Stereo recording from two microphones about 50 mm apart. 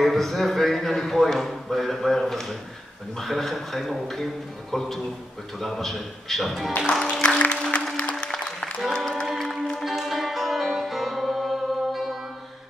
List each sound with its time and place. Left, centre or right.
0.0 s a man's voice: centre
6.9 s music: centre
8.3 s music: centre
8.7 s music: centre